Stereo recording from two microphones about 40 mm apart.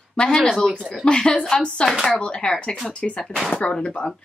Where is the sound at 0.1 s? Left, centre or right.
Centre.